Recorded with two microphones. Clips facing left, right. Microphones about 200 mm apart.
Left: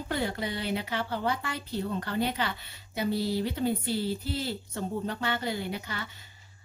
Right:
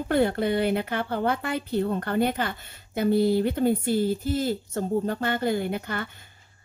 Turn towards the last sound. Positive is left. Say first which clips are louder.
# right 7 dB
turn(degrees=-55)  # may be behind; listen again after turning